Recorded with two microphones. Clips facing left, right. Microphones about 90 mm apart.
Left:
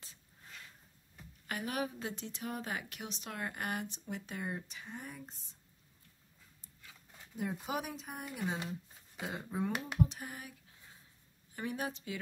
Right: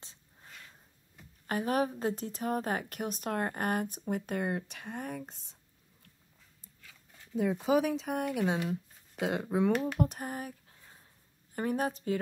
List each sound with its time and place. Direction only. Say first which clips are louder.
0.0 s a sound: right 3 dB; 25° right (ahead or behind)
1.5 s a woman's voice: right 8 dB; 40° right (ahead or behind); by 5.6 s 70° right (ahead or behind)
6.9 s a sound: left 1 dB; 10° left (ahead or behind)
7.8 s speech: right 12 dB; 90° right
9.9 s a woman's voice: right 3 dB; 50° right (ahead or behind)
11.5 s a woman's voice: right 7 dB; 45° right (ahead or behind)